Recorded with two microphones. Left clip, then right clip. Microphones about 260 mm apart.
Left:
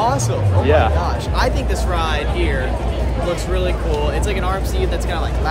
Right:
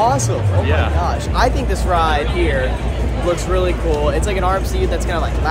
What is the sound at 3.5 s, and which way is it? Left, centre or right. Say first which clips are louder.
Speech: right 3 dB; centre.